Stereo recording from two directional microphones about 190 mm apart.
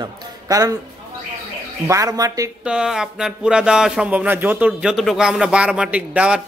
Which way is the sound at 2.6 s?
5° right (ahead or behind).